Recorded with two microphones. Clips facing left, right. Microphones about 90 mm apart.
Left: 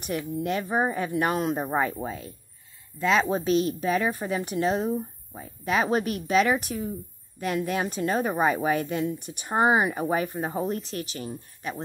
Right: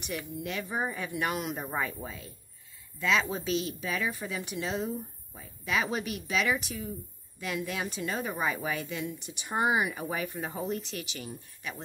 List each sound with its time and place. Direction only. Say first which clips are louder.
0.0 s speech: left 7 dB; 40° left (ahead or behind)